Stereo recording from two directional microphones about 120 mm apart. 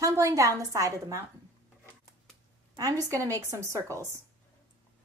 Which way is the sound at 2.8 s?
30° right (ahead or behind).